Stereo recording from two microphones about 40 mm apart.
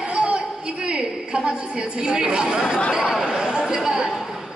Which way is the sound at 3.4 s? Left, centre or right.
Right.